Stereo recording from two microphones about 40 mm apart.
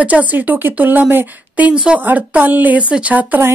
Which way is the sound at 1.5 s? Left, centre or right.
Right.